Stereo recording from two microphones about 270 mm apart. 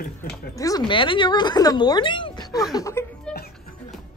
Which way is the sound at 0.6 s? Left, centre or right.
Centre.